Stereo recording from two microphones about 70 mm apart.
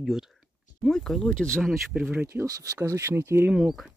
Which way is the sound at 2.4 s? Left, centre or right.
Right.